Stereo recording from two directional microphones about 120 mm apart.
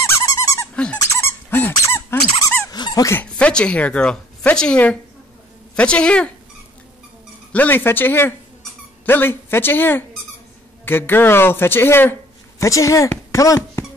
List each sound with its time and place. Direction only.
0.0 s dog: 25° left (ahead or behind)
1.5 s squeak: 20° left (ahead or behind)
2.7 s dog: 35° left (ahead or behind)
3.1 s a man's voice: 10° left (ahead or behind)
7.5 s a man's voice: 15° left (ahead or behind)